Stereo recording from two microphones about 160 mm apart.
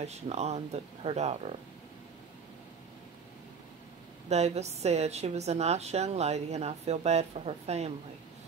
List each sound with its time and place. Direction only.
0.0 s a woman's voice: 40° right (ahead or behind)
4.3 s a woman's voice: 45° right (ahead or behind)